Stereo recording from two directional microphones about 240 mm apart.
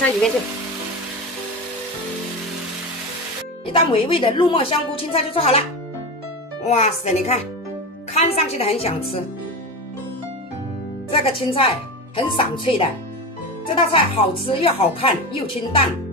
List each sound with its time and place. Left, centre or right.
3.6 s speech: left
6.6 s speech: left
11.1 s speech: left